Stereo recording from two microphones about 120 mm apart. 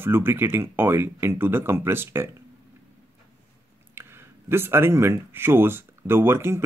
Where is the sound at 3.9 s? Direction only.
20° right (ahead or behind).